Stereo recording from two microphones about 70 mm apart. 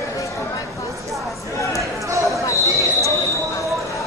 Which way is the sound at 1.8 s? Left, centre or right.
Right.